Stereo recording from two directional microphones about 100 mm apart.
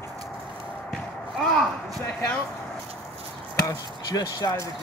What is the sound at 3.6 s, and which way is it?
Speech, 40° left (ahead or behind).